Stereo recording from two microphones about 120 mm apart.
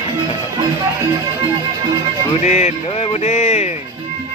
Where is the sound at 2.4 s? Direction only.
70° left (ahead or behind).